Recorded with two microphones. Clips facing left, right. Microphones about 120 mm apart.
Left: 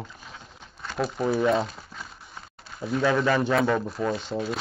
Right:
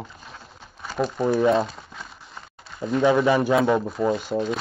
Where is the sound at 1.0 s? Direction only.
5° left (ahead or behind).